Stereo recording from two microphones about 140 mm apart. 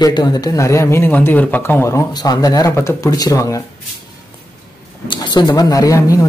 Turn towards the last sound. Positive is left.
turn(degrees=25)  # may be behind; listen again after turning